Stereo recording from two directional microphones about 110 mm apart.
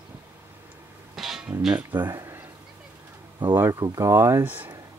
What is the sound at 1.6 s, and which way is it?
Speech, 15° right (ahead or behind).